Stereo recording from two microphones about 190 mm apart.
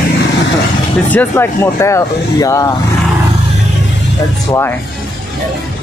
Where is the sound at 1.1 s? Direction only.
10° left (ahead or behind).